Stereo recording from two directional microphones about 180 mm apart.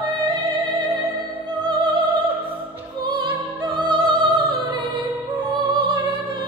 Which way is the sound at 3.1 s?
25° right (ahead or behind).